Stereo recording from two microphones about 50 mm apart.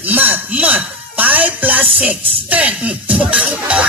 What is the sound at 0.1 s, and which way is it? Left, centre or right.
Speech, right.